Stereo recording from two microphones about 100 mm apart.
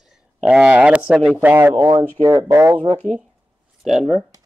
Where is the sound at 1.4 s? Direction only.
20° right (ahead or behind).